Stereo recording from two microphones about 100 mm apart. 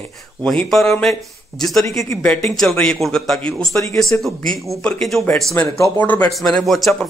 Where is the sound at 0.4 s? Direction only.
5° left (ahead or behind).